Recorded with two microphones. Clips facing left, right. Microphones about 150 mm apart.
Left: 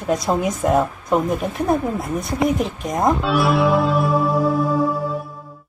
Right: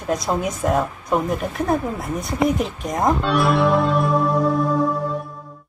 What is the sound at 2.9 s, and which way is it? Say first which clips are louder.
Music: left 1 dB; 5° left (ahead or behind).